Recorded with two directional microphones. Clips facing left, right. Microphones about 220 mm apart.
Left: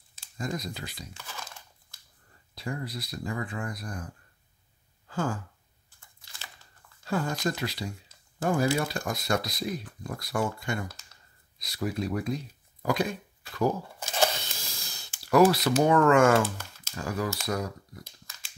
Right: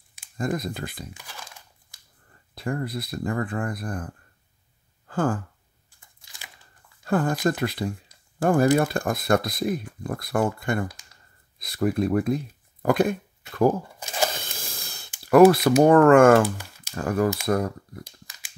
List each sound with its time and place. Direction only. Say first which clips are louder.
0.4 s speech: right 7 dB; 55° right (ahead or behind)
1.1 s speech: even; 10° right (ahead or behind)
2.5 s speech: right 6 dB; 55° right (ahead or behind)
5.0 s sigh: right 6 dB; 55° right (ahead or behind)
7.1 s speech: right 6 dB; 55° right (ahead or behind)
13.4 s a sound: right 6 dB; 20° right (ahead or behind)
14.3 s a sound: right 3 dB; 50° right (ahead or behind)
15.1 s speech: right 7 dB; 55° right (ahead or behind)
16.4 s typing: right 6 dB; 15° right (ahead or behind)
16.9 s speech: right 8 dB; 55° right (ahead or behind)
18.0 s a sound: right 3 dB; 15° right (ahead or behind)